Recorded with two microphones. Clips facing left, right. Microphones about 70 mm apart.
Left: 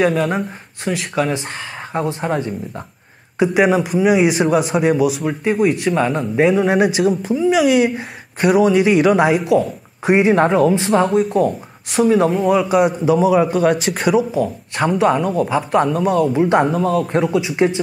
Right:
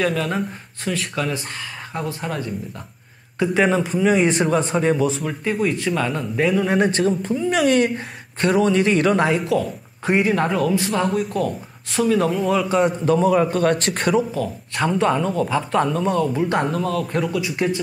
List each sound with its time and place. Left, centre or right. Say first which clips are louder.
0.0 s speech: left 5 dB; centre
3.3 s a man's voice: left 4 dB; centre